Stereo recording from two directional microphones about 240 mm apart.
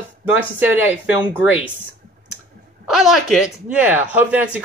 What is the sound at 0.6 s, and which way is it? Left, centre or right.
Speech, centre.